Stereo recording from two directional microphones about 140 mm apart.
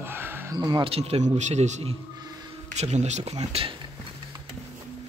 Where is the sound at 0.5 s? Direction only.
30° right (ahead or behind).